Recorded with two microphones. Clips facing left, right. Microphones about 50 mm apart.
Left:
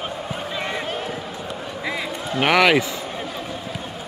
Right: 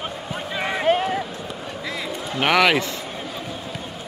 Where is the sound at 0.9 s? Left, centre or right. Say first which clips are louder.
Right 10 dB; right.